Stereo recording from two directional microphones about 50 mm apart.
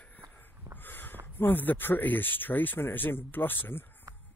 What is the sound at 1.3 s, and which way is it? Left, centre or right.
Speech, left.